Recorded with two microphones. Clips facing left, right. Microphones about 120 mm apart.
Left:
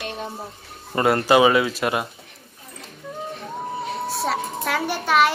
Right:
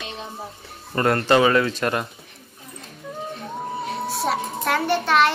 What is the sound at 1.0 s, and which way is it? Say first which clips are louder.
A child's voice: left 1 dB; 10° left (ahead or behind).